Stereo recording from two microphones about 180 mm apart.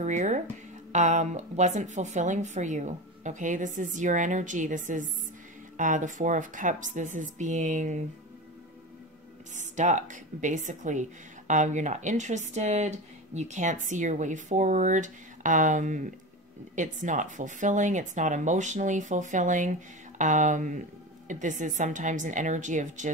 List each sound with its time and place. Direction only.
0.0 s speech: 40° right (ahead or behind)
9.6 s speech: 40° right (ahead or behind)